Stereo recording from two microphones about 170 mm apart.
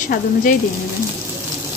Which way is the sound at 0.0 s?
50° left (ahead or behind).